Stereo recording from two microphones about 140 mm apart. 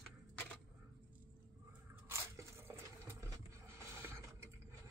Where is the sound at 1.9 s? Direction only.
20° right (ahead or behind).